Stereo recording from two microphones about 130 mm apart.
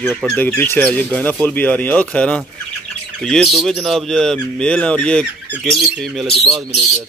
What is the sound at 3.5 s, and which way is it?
A man's voice, centre (ahead or behind).